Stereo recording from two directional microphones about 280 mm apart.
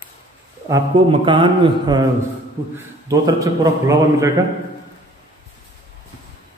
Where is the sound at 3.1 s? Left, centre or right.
Centre.